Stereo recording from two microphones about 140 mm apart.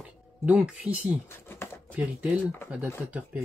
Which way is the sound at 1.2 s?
15° left (ahead or behind).